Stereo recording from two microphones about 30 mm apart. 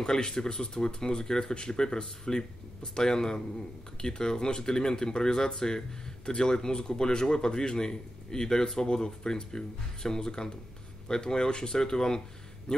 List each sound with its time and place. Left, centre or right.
0.0 s speech: left